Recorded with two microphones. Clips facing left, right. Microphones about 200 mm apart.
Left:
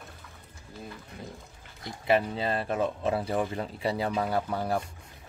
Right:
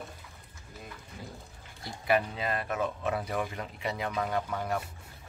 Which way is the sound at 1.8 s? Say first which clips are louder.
Left 2 dB; 25° left (ahead or behind).